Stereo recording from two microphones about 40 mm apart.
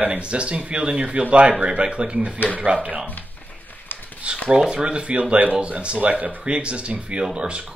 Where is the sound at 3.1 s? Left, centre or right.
Left.